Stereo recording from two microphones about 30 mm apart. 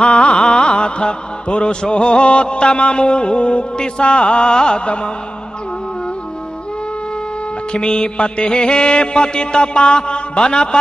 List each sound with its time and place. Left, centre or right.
0.0 s music: left
7.7 s music: left